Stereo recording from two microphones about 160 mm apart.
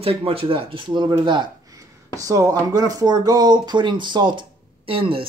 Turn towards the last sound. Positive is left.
turn(degrees=-35)  # may be behind; listen again after turning